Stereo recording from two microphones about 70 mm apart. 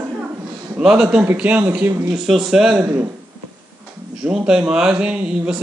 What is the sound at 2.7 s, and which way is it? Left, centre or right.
Speech, right.